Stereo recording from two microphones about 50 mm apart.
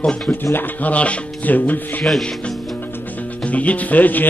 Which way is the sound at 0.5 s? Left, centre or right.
Left.